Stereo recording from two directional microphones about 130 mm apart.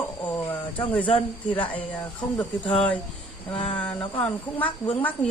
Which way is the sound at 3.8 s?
10° left (ahead or behind).